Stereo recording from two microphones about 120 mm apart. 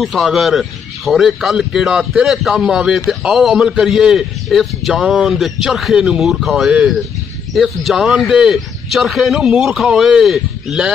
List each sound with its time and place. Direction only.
0.0 s a man's voice: centre (ahead or behind)